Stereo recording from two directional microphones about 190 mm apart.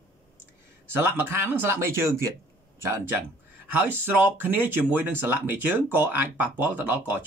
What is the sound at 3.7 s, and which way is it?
Speech, 10° right (ahead or behind).